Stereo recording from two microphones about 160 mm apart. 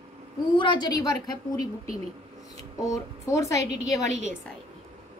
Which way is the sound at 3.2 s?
20° left (ahead or behind).